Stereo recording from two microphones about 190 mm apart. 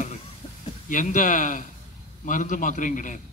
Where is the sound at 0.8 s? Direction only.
45° left (ahead or behind).